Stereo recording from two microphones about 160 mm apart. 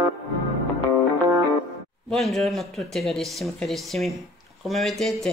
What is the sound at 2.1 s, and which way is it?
Speech, centre (ahead or behind).